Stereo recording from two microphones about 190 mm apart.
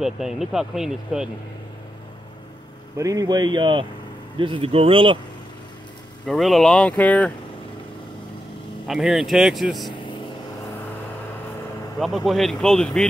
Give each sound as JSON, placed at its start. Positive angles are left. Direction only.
{"t": 0.0, "sound": "speech", "side_deg": 0}
{"t": 3.0, "sound": "speech", "side_deg": -20}
{"t": 6.2, "sound": "speech", "side_deg": 0}
{"t": 8.8, "sound": "speech", "side_deg": 0}
{"t": 12.0, "sound": "speech", "side_deg": 0}